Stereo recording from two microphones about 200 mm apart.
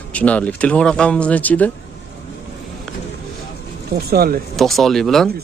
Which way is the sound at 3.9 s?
50° right (ahead or behind).